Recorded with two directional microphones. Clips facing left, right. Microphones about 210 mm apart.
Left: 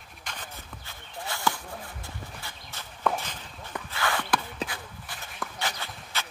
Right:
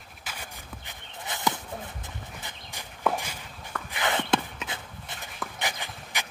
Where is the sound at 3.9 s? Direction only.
20° right (ahead or behind).